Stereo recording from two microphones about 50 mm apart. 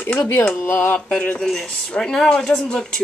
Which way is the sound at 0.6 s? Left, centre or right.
Left.